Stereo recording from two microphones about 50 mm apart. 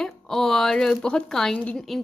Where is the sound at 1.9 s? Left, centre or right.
Centre.